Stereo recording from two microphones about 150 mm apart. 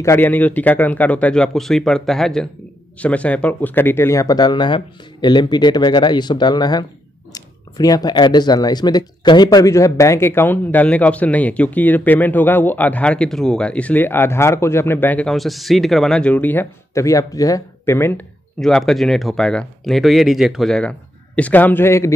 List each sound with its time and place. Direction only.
0.0 s speech: 15° left (ahead or behind)
18.6 s speech: centre (ahead or behind)